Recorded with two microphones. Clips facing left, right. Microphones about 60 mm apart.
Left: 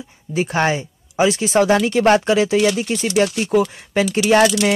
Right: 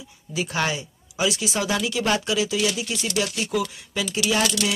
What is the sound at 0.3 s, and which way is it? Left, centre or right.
Speech, left.